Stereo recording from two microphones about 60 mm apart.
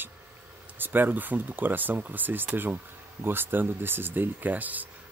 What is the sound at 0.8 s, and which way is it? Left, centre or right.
Speech, right.